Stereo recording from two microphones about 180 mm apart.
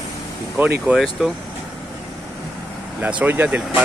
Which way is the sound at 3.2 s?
10° right (ahead or behind).